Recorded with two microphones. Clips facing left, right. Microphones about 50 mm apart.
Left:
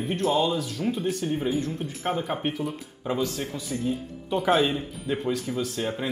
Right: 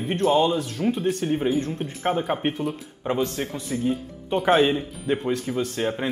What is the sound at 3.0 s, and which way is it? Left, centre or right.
A man's voice, right.